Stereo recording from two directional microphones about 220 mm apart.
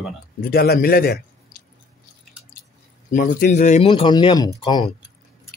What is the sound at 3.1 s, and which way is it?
Speech, 40° left (ahead or behind).